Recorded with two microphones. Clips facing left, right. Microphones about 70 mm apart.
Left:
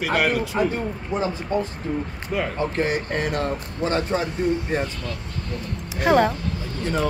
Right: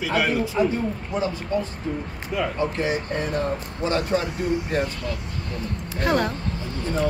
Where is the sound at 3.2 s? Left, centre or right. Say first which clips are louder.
Left 1 dB; left.